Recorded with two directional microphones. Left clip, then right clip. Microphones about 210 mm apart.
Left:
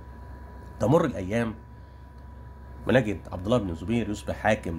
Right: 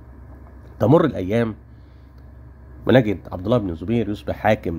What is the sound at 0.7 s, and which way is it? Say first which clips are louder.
Speech: right 7 dB; 35° right (ahead or behind).